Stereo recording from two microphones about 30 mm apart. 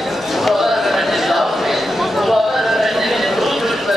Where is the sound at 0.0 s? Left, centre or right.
Centre.